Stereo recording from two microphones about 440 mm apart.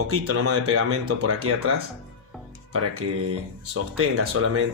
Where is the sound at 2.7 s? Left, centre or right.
Right.